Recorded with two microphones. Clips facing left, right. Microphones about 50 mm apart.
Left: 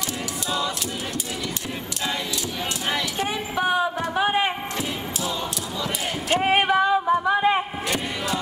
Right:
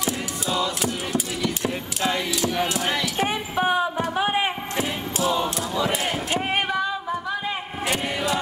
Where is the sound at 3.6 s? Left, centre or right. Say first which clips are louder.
Even; centre.